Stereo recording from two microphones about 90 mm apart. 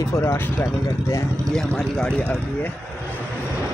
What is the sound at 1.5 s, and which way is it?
Speech, 5° left (ahead or behind).